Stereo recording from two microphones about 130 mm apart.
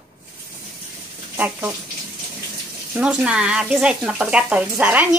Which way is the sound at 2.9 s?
10° right (ahead or behind).